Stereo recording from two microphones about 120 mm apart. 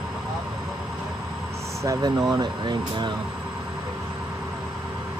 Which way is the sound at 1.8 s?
35° right (ahead or behind).